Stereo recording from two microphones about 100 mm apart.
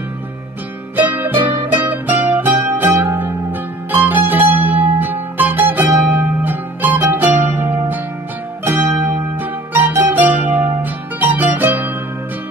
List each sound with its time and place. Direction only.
0.9 s music: 20° right (ahead or behind)